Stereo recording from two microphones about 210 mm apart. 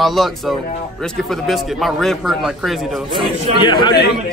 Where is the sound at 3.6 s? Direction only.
20° left (ahead or behind).